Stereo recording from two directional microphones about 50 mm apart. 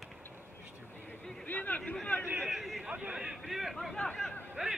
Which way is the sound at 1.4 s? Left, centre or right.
Left.